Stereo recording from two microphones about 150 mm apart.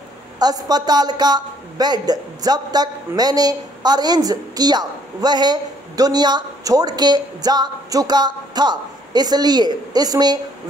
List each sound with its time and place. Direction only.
0.4 s speech: 25° right (ahead or behind)